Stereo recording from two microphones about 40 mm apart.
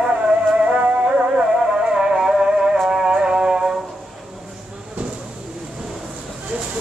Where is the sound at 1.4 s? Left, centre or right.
Centre.